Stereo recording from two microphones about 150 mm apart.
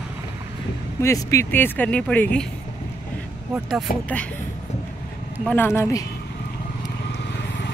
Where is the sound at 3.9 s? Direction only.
70° left (ahead or behind).